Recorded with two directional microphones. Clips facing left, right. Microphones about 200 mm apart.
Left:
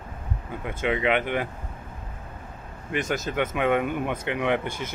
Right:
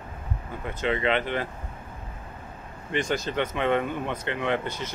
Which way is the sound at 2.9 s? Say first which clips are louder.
Even; 5° left (ahead or behind).